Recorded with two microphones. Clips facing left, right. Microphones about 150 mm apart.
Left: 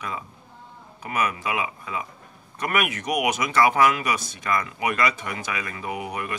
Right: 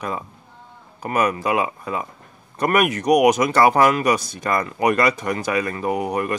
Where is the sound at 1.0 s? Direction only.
40° right (ahead or behind).